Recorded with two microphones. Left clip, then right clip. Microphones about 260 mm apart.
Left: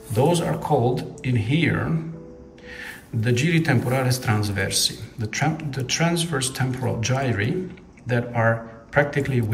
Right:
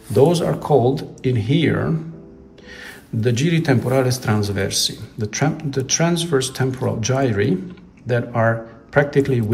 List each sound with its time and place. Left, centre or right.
0.2 s a man's voice: centre
2.8 s a man's voice: centre